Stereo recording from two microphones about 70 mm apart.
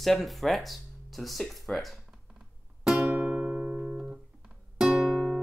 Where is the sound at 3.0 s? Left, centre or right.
Right.